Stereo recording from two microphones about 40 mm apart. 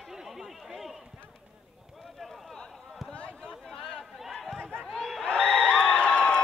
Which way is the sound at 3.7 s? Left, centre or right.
Centre.